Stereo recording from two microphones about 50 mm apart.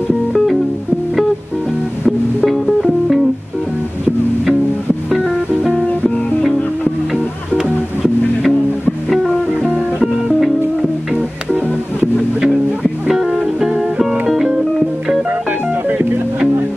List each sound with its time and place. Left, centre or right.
2.0 s music: centre
8.0 s music: centre
13.1 s music: centre